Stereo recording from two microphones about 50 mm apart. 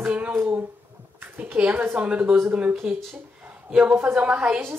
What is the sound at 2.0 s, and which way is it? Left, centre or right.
A woman's voice, right.